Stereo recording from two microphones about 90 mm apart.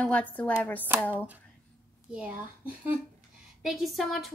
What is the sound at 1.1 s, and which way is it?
A child's voice, 20° right (ahead or behind).